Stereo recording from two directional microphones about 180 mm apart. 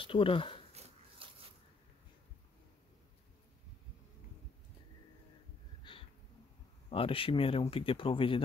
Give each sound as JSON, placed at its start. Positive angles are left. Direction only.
{"t": 0.0, "sound": "speech", "side_deg": 30}
{"t": 0.7, "sound": "dog", "side_deg": -30}
{"t": 5.9, "sound": "a sound", "side_deg": 25}
{"t": 6.9, "sound": "speech", "side_deg": 30}